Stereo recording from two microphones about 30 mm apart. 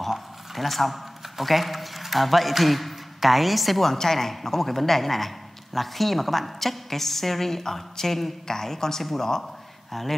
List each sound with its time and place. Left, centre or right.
0.6 s a man's voice: centre